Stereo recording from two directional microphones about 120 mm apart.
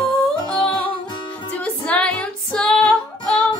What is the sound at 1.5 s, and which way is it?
Music, 10° left (ahead or behind).